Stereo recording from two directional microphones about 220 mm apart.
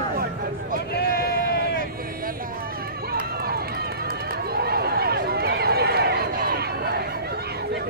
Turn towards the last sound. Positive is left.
turn(degrees=-45)  # may be behind; listen again after turning